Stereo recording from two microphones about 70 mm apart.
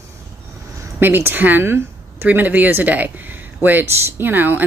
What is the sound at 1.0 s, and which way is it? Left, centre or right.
A woman's voice, right.